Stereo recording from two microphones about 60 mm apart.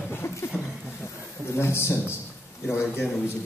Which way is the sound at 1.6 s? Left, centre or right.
Left.